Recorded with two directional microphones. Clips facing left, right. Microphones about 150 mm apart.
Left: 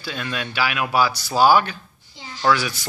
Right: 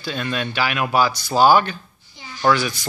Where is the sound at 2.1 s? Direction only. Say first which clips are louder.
Left 1 dB; 25° left (ahead or behind).